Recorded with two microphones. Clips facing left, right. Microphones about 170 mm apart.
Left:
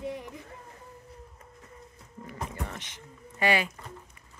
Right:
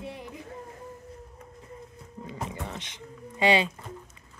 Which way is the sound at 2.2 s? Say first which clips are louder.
Right 1 dB; 20° right (ahead or behind).